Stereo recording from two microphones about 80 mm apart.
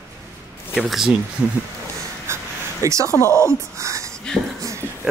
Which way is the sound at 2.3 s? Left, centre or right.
Right.